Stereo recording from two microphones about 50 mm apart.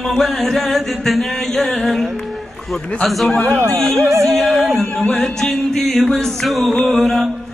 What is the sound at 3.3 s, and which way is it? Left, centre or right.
Speech, centre.